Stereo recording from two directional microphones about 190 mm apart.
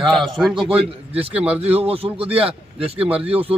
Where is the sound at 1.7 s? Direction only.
30° right (ahead or behind).